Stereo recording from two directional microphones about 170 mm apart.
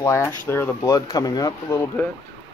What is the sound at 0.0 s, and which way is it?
Speech, 15° left (ahead or behind).